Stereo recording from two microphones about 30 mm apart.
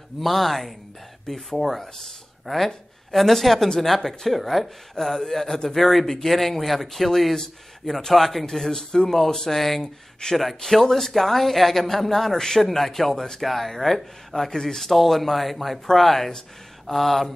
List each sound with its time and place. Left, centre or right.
0.2 s speech: centre
4.9 s speech: centre
7.3 s speech: centre
8.1 s speech: centre
13.4 s speech: centre
14.9 s speech: centre
16.8 s a sound: centre